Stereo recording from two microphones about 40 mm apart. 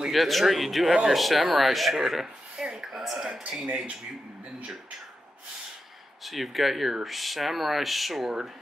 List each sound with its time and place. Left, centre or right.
0.1 s speech: centre
2.8 s a sound: centre
3.6 s speech: right
6.2 s speech: centre